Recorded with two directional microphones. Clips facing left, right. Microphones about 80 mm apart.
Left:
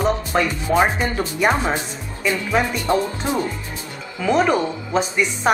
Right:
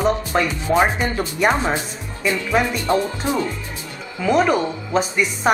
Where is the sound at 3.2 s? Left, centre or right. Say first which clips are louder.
Right 1 dB; left.